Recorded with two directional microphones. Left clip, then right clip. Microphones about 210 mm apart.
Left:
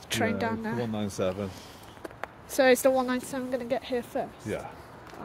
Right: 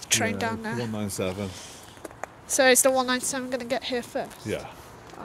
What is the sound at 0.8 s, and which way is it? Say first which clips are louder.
Speech: left 3 dB; 40° right (ahead or behind).